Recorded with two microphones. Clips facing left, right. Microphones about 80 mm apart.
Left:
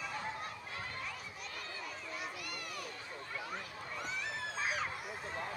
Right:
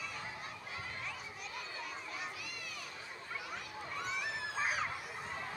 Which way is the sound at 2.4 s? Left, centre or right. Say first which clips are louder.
Left 3 dB; left.